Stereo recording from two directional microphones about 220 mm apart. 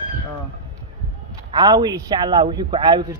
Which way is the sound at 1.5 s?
20° right (ahead or behind).